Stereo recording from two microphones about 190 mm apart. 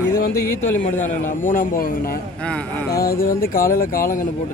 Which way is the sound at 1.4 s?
45° left (ahead or behind).